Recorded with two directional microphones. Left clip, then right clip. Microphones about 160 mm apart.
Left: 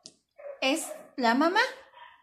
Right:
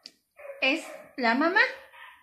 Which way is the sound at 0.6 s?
30° left (ahead or behind).